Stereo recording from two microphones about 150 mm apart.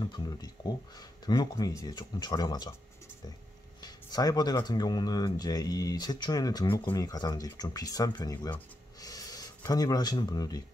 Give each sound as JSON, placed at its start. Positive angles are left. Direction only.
{"t": 0.0, "sound": "speech", "side_deg": 30}
{"t": 3.8, "sound": "speech", "side_deg": 25}
{"t": 9.0, "sound": "a sound", "side_deg": 25}
{"t": 9.7, "sound": "speech", "side_deg": 25}